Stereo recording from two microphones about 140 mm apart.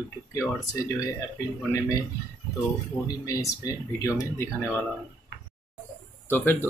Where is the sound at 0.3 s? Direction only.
20° left (ahead or behind).